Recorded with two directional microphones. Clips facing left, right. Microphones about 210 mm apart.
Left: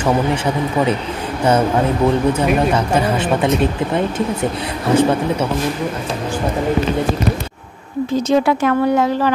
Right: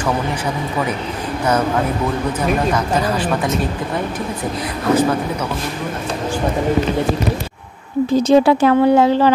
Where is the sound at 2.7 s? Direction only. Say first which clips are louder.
Left 2 dB; 25° left (ahead or behind).